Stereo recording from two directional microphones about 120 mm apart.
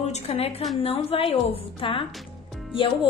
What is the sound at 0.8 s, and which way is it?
A woman's voice, 50° left (ahead or behind).